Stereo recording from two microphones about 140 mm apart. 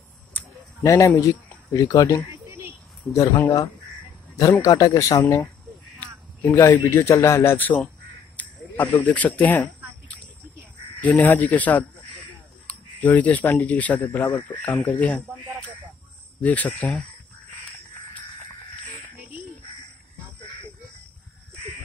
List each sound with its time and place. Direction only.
0.8 s speech: 20° left (ahead or behind)
3.1 s speech: 10° left (ahead or behind)
3.4 s speech: 30° left (ahead or behind)
5.2 s speech: 10° left (ahead or behind)
5.9 s crow: 20° left (ahead or behind)
7.0 s speech: 20° left (ahead or behind)
8.4 s a sound: 10° left (ahead or behind)
9.0 s speech: 10° left (ahead or behind)
11.0 s speech: 10° left (ahead or behind)
13.0 s speech: 10° left (ahead or behind)
16.3 s speech: 10° left (ahead or behind)